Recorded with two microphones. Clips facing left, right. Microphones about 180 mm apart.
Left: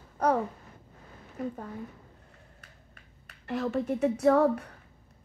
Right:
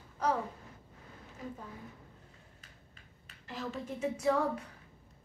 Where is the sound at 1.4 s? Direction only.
65° left (ahead or behind).